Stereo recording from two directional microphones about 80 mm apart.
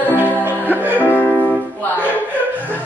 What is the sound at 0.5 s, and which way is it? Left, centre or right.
Music, right.